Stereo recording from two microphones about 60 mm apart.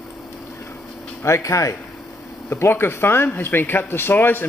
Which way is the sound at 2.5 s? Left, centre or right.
Left.